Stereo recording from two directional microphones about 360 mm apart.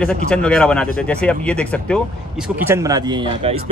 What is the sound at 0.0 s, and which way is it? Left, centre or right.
Speech, centre.